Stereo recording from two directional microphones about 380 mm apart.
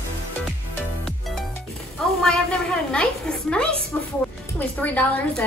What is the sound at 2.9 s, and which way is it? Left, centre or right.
Speech, centre.